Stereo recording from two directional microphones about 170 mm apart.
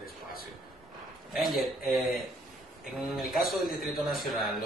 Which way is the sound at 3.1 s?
Centre (ahead or behind).